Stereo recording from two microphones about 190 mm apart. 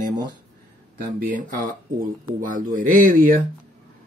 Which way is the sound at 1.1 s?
45° right (ahead or behind).